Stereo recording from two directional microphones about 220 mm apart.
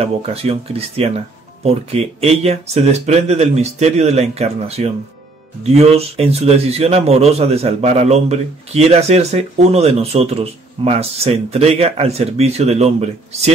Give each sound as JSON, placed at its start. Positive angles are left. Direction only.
{"t": 0.0, "sound": "a man's voice", "side_deg": -25}